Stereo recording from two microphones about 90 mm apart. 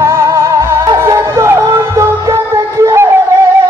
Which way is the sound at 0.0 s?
30° right (ahead or behind).